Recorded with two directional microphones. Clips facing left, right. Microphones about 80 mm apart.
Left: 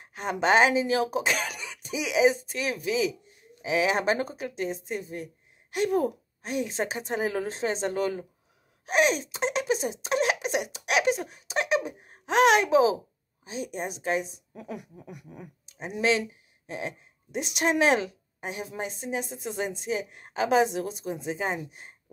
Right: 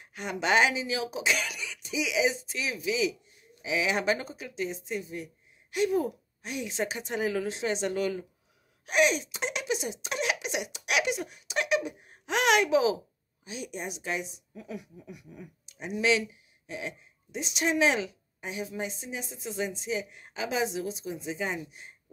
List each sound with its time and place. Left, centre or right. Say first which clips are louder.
0.0 s speech: left 5 dB; left